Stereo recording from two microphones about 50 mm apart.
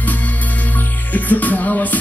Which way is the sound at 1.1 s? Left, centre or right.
Left.